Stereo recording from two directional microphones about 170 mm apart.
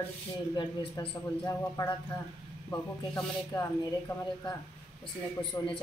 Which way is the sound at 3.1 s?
15° left (ahead or behind).